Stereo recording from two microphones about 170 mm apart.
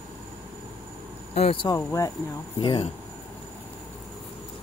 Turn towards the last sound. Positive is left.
turn(degrees=35)  # may be behind; listen again after turning